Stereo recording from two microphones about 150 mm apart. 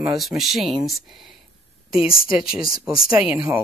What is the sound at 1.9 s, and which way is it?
Speech, 40° left (ahead or behind).